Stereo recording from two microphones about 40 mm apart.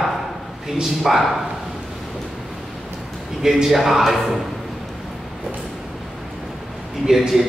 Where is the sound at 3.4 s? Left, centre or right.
Centre.